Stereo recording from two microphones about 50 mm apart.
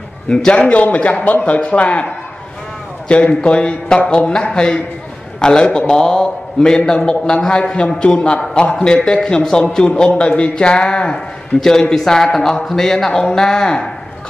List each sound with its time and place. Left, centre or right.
0.3 s a man's voice: centre
0.6 s a man's voice: left